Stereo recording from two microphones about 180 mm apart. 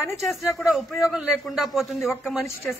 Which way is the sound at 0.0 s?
Centre (ahead or behind).